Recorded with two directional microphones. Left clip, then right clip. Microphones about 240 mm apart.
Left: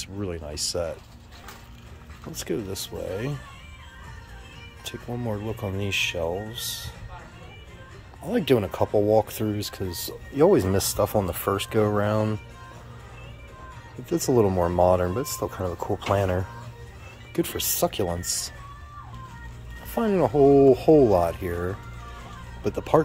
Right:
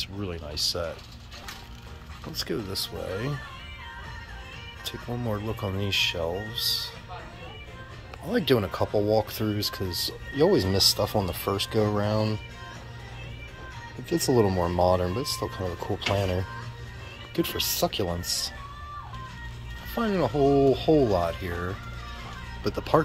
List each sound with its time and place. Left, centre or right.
0.2 s speech: centre
2.3 s speech: centre
5.1 s speech: centre
8.3 s speech: centre
14.0 s speech: centre
19.9 s speech: centre